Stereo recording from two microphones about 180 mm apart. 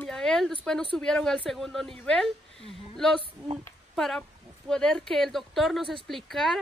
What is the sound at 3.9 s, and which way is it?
A woman's voice, centre (ahead or behind).